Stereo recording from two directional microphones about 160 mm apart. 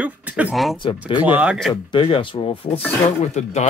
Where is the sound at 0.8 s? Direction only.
30° left (ahead or behind).